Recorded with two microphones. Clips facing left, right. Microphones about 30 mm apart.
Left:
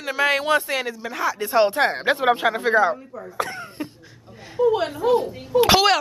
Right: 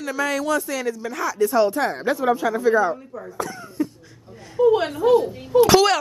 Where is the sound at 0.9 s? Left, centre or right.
Left.